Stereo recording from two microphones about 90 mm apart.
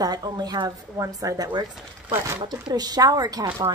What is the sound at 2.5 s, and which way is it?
A woman's voice, 50° right (ahead or behind).